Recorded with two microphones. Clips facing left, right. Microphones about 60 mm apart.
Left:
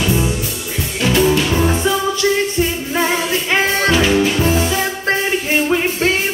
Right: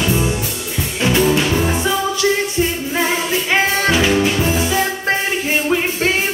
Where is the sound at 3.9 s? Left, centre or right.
Centre.